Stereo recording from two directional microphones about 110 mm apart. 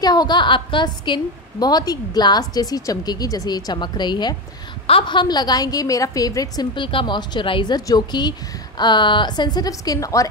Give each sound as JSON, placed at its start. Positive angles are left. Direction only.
{"t": 0.0, "sound": "a woman's voice", "side_deg": 40}